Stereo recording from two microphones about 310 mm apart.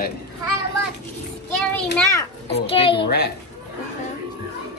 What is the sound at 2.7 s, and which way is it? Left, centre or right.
Speech, centre.